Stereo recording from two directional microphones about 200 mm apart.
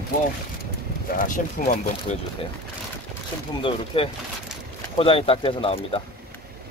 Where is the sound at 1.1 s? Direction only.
40° left (ahead or behind).